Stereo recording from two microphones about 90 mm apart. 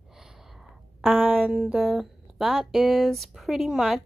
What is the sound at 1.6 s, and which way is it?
A woman's voice, 5° right (ahead or behind).